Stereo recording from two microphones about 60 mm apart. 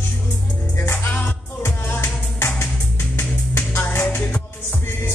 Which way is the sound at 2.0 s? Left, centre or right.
Left.